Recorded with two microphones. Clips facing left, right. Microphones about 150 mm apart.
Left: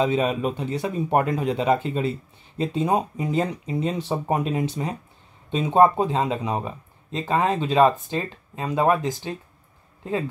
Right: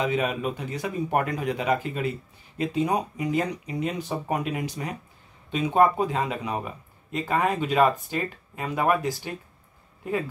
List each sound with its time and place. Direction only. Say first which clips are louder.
0.0 s speech: left 4 dB; 30° left (ahead or behind)